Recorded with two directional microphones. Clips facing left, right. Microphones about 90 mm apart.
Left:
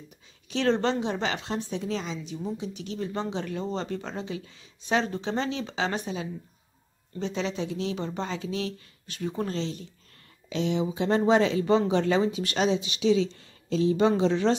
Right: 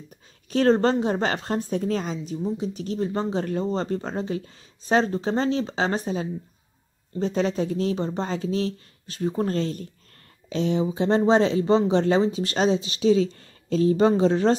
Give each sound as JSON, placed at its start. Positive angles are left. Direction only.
{"t": 0.5, "sound": "a woman's voice", "side_deg": -40}
{"t": 9.5, "sound": "a woman's voice", "side_deg": -45}